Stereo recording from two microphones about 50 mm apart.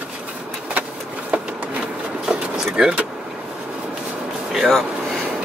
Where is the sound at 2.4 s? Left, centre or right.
Centre.